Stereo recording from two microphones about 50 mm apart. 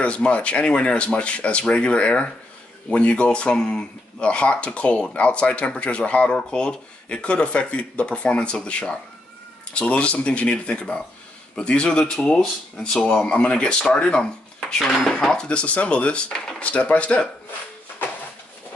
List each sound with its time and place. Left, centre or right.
0.0 s speech: left